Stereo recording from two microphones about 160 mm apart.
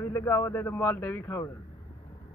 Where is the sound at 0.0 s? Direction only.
15° left (ahead or behind).